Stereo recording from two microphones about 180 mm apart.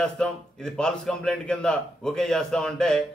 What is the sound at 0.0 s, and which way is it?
A man's voice, 5° left (ahead or behind).